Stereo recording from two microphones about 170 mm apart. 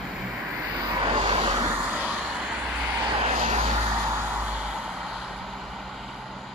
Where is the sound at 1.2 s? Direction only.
30° right (ahead or behind).